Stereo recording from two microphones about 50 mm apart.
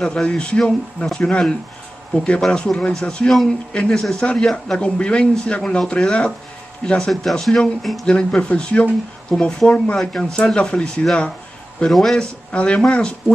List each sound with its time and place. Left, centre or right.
0.0 s a man's voice: centre
7.4 s speech: centre
8.0 s a man's voice: centre
11.9 s a man's voice: centre
12.5 s speech: left